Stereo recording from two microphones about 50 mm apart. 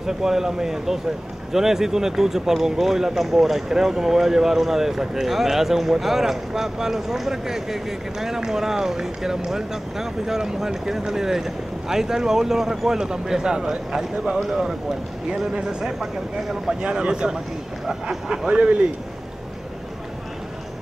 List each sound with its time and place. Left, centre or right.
0.0 s speech: centre
16.8 s speech: centre